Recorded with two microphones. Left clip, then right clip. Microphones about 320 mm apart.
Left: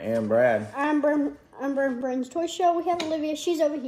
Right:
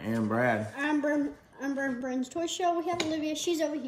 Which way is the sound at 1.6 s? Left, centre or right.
Left.